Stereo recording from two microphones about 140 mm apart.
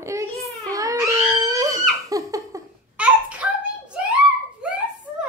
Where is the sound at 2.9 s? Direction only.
10° right (ahead or behind).